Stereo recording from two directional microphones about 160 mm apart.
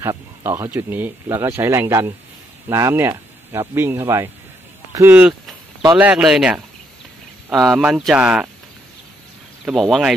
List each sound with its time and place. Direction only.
0.0 s speech: 15° right (ahead or behind)
4.9 s a sound: 10° right (ahead or behind)
5.9 s speech: 10° right (ahead or behind)
9.7 s speech: centre (ahead or behind)